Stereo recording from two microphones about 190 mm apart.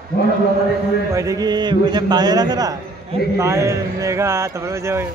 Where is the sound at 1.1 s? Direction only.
20° right (ahead or behind).